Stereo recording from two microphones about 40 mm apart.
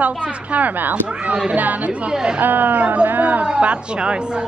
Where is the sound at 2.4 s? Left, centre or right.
Right.